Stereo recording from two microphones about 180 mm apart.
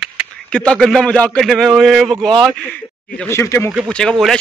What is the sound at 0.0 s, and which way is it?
Speech, centre (ahead or behind).